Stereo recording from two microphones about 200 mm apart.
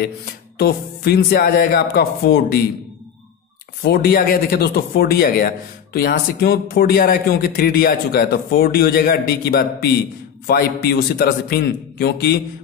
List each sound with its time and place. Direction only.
0.0 s speech: 50° left (ahead or behind)
3.8 s speech: 50° left (ahead or behind)